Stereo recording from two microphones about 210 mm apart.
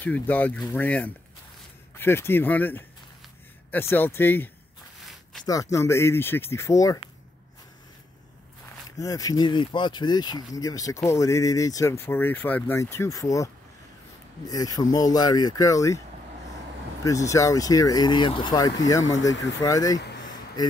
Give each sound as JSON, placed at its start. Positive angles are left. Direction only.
{"t": 0.0, "sound": "speech", "side_deg": 10}
{"t": 5.0, "sound": "a sound", "side_deg": 0}
{"t": 5.4, "sound": "speech", "side_deg": 15}
{"t": 8.9, "sound": "speech", "side_deg": 15}
{"t": 14.5, "sound": "speech", "side_deg": 15}
{"t": 17.0, "sound": "speech", "side_deg": 15}